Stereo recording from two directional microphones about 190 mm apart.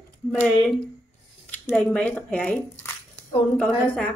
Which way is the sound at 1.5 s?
10° left (ahead or behind).